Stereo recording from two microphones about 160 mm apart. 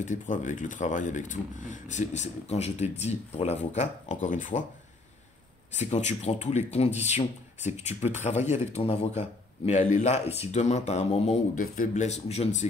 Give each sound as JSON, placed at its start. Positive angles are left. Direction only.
{"t": 0.0, "sound": "speech", "side_deg": 50}
{"t": 5.7, "sound": "speech", "side_deg": 45}
{"t": 11.5, "sound": "speech", "side_deg": 60}